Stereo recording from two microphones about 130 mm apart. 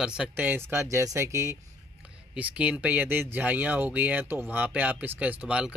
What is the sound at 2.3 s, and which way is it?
Speech, 10° right (ahead or behind).